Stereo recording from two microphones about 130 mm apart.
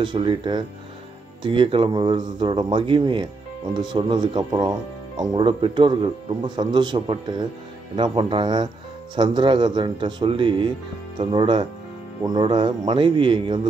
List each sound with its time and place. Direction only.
0.0 s a man's voice: 40° right (ahead or behind)